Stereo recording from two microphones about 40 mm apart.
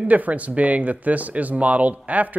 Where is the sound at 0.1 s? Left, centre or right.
Right.